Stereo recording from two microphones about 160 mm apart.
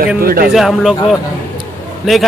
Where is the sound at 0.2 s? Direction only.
65° right (ahead or behind).